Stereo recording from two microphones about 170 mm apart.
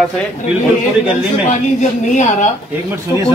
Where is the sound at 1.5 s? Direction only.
45° left (ahead or behind).